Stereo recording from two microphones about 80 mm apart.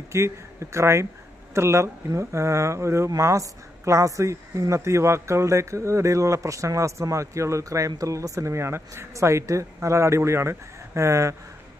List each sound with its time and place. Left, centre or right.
0.1 s speech: right